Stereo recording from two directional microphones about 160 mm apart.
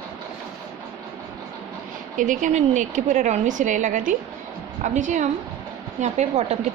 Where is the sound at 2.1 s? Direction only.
50° right (ahead or behind).